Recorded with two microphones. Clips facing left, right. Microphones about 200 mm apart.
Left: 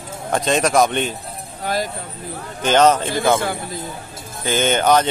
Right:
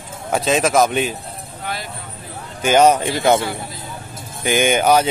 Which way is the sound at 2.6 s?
10° right (ahead or behind).